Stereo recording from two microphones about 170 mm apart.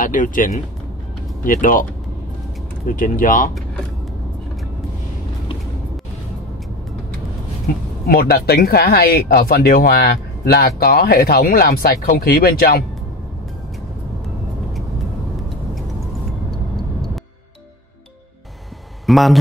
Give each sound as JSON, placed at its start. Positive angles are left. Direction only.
{"t": 0.0, "sound": "speech", "side_deg": 50}
{"t": 2.9, "sound": "speech", "side_deg": 50}
{"t": 8.1, "sound": "speech", "side_deg": 65}
{"t": 19.0, "sound": "speech", "side_deg": 0}